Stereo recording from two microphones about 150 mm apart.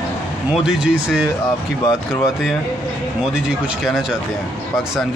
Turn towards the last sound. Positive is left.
turn(degrees=0)  # may be behind; listen again after turning